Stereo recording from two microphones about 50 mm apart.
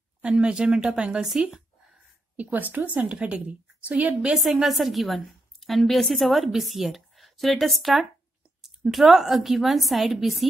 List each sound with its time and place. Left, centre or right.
0.2 s speech: centre
2.3 s a woman's voice: right
4.6 s a woman's voice: centre